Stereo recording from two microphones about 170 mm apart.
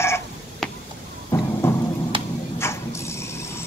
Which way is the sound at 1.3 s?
15° left (ahead or behind).